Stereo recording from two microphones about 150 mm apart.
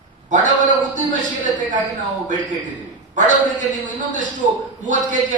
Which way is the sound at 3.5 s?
55° right (ahead or behind).